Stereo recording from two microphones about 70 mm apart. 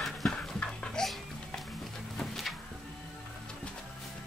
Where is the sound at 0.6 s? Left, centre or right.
Centre.